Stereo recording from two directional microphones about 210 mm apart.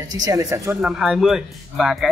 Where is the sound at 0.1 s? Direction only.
15° right (ahead or behind).